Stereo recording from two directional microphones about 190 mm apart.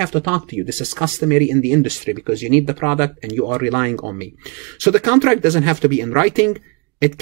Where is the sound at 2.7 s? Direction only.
10° right (ahead or behind).